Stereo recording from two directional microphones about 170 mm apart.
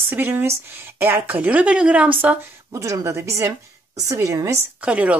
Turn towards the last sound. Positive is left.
turn(degrees=-10)  # may be behind; listen again after turning